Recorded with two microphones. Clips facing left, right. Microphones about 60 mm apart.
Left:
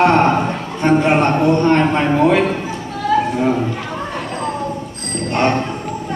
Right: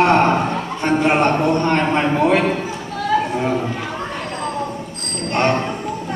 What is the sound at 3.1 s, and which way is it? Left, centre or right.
Children playing, centre.